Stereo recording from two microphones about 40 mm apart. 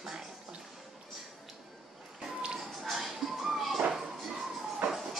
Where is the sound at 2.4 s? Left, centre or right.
Right.